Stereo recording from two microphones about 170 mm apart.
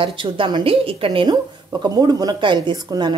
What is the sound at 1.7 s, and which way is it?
A woman's voice, 20° right (ahead or behind).